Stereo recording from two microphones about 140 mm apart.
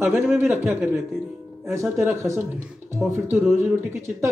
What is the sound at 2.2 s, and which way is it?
Speech, 20° right (ahead or behind).